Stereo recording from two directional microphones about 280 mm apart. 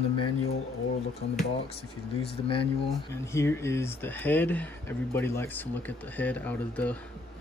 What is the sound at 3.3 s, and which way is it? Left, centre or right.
Speech, centre.